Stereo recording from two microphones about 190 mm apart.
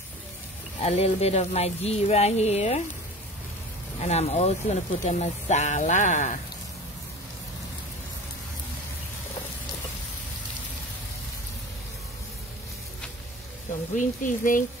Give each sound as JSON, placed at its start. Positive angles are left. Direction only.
{"t": 0.7, "sound": "speech", "side_deg": 35}
{"t": 4.0, "sound": "speech", "side_deg": 35}
{"t": 13.9, "sound": "speech", "side_deg": 45}